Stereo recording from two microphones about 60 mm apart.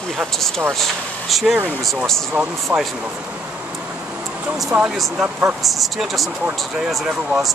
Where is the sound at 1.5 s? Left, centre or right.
Right.